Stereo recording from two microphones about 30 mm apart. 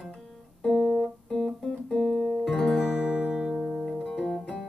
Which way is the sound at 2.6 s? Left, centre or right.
Centre.